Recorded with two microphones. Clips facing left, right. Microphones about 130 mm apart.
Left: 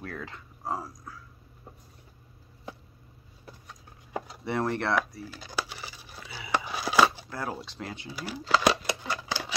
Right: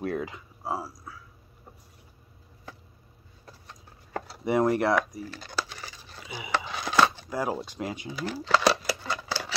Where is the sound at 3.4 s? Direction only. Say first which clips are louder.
Left 1 dB; 10° left (ahead or behind).